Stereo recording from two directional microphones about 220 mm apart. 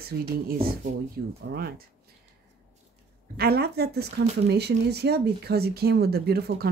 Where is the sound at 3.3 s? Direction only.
45° right (ahead or behind).